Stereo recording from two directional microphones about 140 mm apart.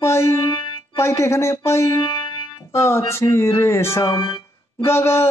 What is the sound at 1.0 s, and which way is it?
Speech, 20° left (ahead or behind).